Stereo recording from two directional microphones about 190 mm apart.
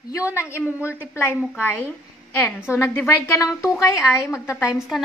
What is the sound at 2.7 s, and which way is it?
A woman's voice, 10° left (ahead or behind).